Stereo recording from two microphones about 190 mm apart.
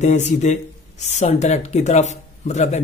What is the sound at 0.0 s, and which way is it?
Speech, 40° left (ahead or behind).